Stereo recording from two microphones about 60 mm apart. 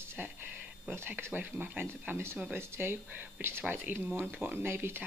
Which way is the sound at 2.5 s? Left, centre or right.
Right.